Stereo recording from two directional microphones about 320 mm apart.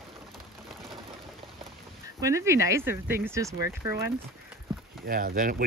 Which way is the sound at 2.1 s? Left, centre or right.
Centre.